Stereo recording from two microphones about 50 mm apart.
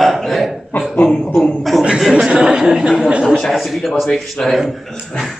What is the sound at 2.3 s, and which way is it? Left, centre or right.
Speech, centre.